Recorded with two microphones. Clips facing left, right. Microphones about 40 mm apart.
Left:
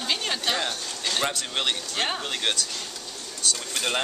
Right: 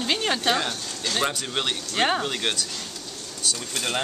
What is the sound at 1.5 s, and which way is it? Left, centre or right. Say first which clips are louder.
Speech: even; centre.